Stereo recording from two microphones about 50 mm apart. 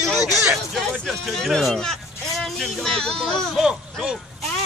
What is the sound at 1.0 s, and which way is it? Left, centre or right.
A man's voice, centre.